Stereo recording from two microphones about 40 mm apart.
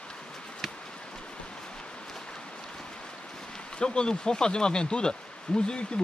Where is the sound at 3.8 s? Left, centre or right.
Left.